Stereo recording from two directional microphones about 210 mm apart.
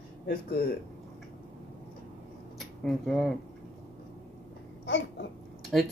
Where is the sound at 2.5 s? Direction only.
Centre (ahead or behind).